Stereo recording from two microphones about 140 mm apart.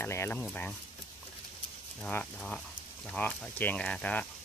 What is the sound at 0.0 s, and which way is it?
Speech, 20° left (ahead or behind).